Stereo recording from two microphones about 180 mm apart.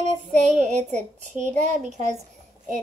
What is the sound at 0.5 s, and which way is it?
A woman's voice, 40° right (ahead or behind).